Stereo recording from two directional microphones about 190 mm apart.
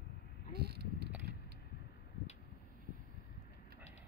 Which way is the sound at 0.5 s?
60° right (ahead or behind).